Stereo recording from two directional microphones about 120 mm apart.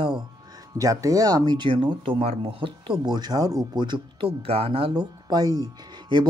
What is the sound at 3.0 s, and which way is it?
Speech, 35° right (ahead or behind).